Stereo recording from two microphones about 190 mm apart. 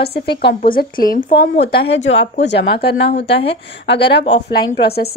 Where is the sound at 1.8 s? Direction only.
70° left (ahead or behind).